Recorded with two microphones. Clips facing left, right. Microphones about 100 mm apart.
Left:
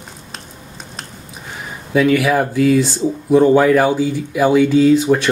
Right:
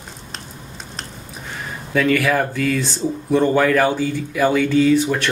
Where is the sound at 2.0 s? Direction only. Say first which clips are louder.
Left 3 dB; 10° left (ahead or behind).